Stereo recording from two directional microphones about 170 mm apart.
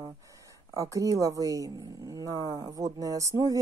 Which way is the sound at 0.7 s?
20° right (ahead or behind).